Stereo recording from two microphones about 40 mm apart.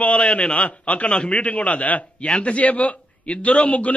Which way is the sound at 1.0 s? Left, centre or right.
Left.